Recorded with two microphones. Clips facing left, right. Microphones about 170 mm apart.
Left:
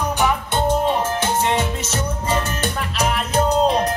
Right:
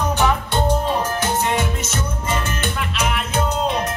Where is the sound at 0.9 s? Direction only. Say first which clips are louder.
Left 1 dB; 25° left (ahead or behind).